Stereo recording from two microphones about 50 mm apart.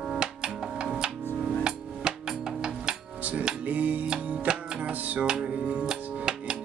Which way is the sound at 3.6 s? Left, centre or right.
Right.